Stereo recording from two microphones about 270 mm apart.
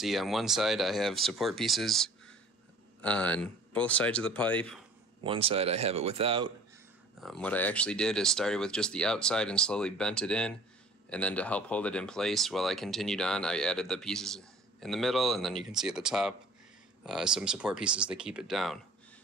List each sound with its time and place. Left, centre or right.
0.0 s speech: centre
5.2 s speech: centre
7.2 s speech: centre